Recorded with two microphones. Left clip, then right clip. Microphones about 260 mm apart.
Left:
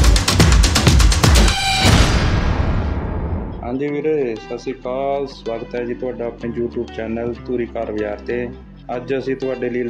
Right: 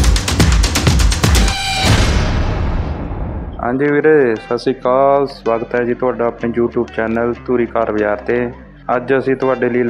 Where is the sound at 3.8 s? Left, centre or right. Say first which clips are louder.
Right 8 dB; centre.